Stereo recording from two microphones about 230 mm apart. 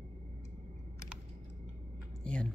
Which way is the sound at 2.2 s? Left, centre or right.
Centre.